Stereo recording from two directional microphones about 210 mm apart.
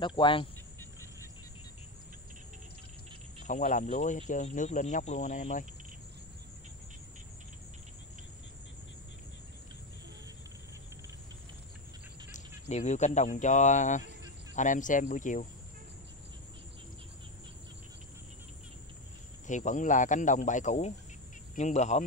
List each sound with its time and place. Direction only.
0.0 s cricket: 20° left (ahead or behind)
3.4 s speech: 35° left (ahead or behind)
12.3 s speech: 35° left (ahead or behind)
19.4 s speech: 35° left (ahead or behind)